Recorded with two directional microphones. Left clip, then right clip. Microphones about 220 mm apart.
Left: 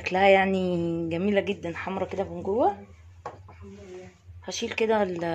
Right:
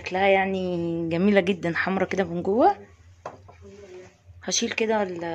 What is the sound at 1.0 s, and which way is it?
Speech, 20° right (ahead or behind).